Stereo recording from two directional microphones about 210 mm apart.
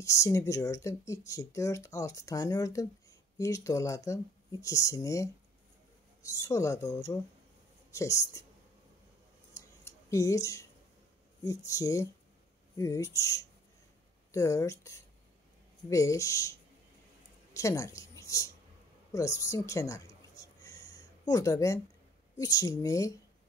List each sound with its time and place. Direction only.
0.0 s speech: 15° left (ahead or behind)
9.5 s scissors: 15° left (ahead or behind)
11.4 s speech: 15° left (ahead or behind)
17.6 s a woman's voice: 15° left (ahead or behind)
19.1 s a sound: 15° left (ahead or behind)
22.4 s speech: 15° left (ahead or behind)